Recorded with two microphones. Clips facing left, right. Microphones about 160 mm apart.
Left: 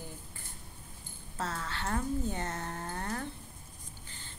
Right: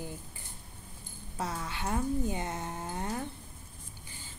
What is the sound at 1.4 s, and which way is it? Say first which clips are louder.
A woman's voice: right 1 dB; 15° right (ahead or behind).